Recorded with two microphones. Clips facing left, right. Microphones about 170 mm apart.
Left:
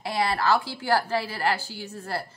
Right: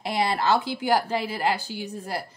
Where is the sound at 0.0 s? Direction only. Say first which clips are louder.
Right 1 dB; 20° right (ahead or behind).